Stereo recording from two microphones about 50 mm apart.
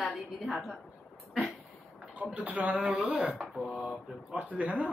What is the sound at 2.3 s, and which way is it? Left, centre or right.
Speech, right.